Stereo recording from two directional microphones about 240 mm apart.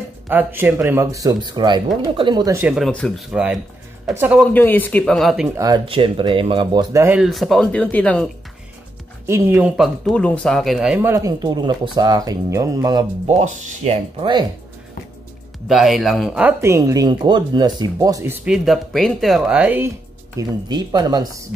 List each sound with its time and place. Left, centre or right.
0.3 s speech: centre
4.4 s speech: centre
5.6 s speech: centre
9.2 s speech: centre
13.3 s speech: right
15.7 s speech: centre
20.3 s speech: centre